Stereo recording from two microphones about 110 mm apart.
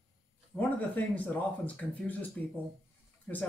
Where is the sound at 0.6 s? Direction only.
15° left (ahead or behind).